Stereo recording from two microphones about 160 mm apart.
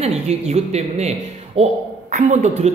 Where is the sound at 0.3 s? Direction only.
45° right (ahead or behind).